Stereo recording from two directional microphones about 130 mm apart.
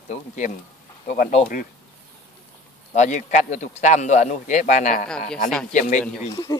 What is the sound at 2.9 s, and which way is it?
A man's voice, 70° left (ahead or behind).